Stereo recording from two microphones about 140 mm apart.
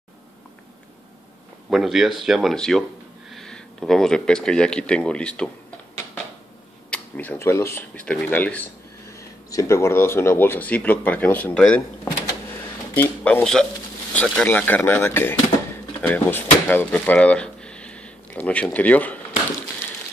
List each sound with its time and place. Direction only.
1.7 s speech: centre (ahead or behind)
6.9 s speech: 10° left (ahead or behind)